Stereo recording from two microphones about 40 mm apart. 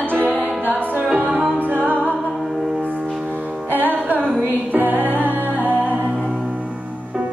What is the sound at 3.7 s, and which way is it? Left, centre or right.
Music, right.